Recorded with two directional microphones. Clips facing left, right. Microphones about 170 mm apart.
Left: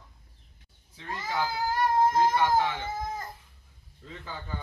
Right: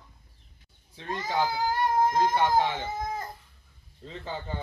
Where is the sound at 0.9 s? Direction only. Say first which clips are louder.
Right 3 dB; 25° right (ahead or behind).